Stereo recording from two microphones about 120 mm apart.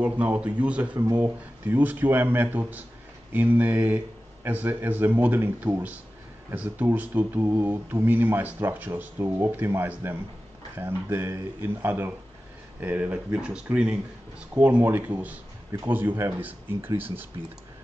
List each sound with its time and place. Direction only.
0.0 s speech: 10° right (ahead or behind)